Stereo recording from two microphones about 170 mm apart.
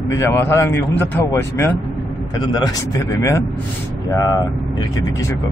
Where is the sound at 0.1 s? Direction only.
15° left (ahead or behind).